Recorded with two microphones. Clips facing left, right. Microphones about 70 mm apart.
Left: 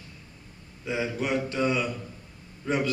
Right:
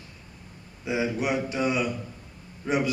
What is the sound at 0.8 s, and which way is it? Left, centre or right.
A man's voice, centre.